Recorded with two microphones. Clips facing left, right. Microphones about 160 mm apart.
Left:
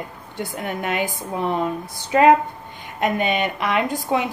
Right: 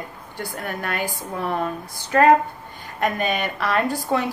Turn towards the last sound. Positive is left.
turn(degrees=20)  # may be behind; listen again after turning